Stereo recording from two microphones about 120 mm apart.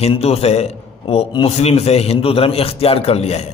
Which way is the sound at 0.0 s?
60° left (ahead or behind).